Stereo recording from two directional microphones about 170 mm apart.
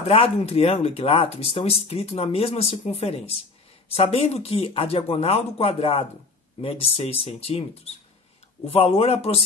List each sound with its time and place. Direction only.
0.0 s speech: 35° left (ahead or behind)